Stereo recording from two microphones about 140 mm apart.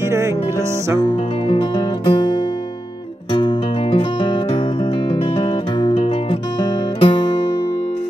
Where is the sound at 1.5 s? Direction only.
40° left (ahead or behind).